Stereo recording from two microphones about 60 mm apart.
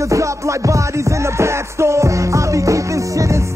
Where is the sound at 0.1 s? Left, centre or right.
Right.